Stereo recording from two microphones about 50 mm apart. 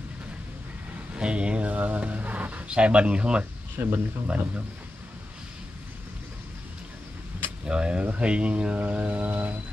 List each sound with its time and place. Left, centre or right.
1.1 s speech: right
3.7 s speech: right
7.6 s speech: centre; by 9.6 s right